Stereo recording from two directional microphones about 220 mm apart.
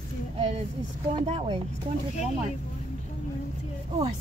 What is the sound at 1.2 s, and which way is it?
Speech, 25° right (ahead or behind).